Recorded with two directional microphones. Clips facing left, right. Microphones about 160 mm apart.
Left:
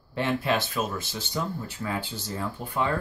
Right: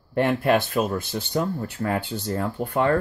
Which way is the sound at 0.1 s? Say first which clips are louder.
Right 6 dB; 55° right (ahead or behind).